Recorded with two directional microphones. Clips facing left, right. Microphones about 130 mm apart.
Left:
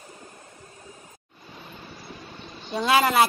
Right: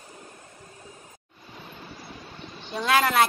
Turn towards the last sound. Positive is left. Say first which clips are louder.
# left 2 dB
turn(degrees=5)  # may be behind; listen again after turning